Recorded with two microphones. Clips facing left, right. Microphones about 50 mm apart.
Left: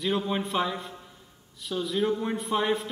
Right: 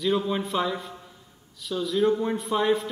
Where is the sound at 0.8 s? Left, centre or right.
Centre.